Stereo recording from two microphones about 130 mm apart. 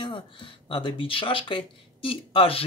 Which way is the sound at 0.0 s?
40° left (ahead or behind).